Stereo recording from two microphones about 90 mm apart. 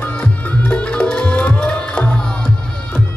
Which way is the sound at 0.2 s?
15° left (ahead or behind).